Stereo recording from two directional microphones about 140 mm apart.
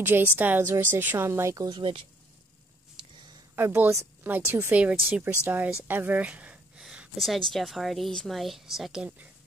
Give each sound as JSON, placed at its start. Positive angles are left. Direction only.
{"t": 0.0, "sound": "speech", "side_deg": -15}
{"t": 1.8, "sound": "speech", "side_deg": -40}
{"t": 3.5, "sound": "speech", "side_deg": -15}